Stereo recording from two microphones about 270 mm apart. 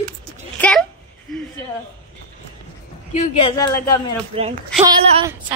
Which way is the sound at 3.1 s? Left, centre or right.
Left.